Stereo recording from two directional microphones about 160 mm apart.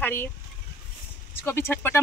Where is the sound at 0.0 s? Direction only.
15° left (ahead or behind).